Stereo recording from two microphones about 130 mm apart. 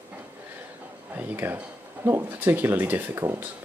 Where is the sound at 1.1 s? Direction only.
15° right (ahead or behind).